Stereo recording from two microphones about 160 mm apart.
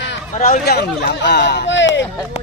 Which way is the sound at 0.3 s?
65° left (ahead or behind).